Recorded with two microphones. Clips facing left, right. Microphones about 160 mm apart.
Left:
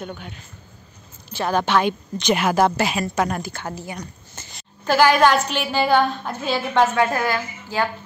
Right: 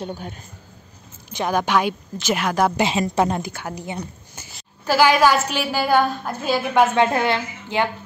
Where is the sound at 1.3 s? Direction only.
15° right (ahead or behind).